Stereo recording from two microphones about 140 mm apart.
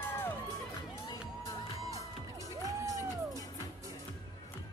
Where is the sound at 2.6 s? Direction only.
25° right (ahead or behind).